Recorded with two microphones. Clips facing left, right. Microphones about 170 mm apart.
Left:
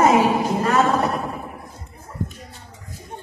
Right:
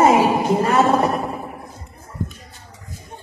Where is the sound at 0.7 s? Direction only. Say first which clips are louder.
Right 2 dB; 25° right (ahead or behind).